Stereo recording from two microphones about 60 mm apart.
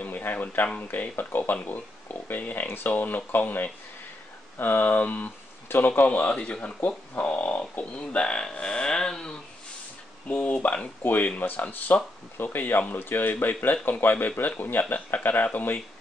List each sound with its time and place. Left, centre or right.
0.0 s speech: left
11.0 s speech: left